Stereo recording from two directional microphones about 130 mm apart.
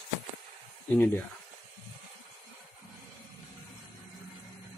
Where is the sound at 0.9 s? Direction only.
15° left (ahead or behind).